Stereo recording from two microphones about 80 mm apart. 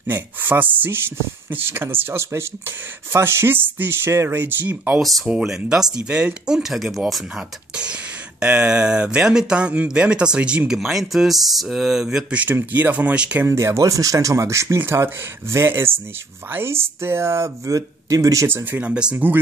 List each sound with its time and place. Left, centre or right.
0.0 s speech: right
10.8 s speech: centre
12.4 s speech: right
13.5 s speech: right
18.5 s speech: right